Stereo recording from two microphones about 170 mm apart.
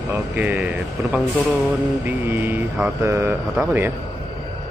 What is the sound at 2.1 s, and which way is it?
A man's voice, 15° right (ahead or behind).